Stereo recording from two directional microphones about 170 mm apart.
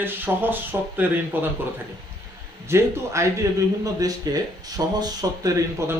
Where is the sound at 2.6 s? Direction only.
15° right (ahead or behind).